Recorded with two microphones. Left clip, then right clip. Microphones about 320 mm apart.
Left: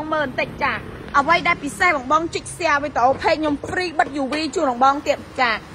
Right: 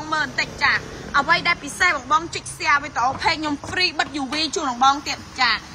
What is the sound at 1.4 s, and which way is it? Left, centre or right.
A woman's voice, centre.